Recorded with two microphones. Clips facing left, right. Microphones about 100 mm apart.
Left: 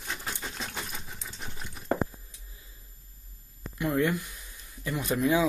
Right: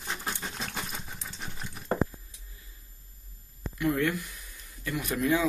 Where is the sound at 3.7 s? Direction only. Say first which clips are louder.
Left 1 dB; 20° left (ahead or behind).